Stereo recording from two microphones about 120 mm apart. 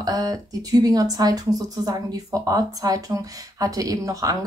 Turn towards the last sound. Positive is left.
turn(degrees=-30)  # may be behind; listen again after turning